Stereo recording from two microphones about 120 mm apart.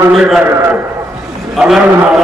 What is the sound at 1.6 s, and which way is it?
Speech, centre (ahead or behind).